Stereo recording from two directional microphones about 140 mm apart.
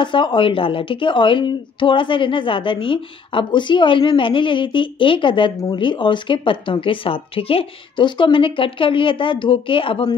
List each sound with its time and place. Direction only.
0.0 s a woman's voice: 35° left (ahead or behind)